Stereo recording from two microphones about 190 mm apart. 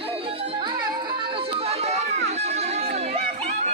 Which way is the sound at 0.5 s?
25° right (ahead or behind).